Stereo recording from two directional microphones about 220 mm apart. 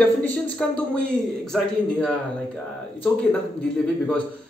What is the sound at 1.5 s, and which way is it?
Speech, 5° left (ahead or behind).